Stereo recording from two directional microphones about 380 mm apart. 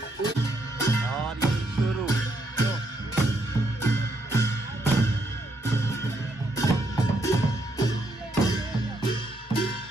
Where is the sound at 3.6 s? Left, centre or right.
Centre.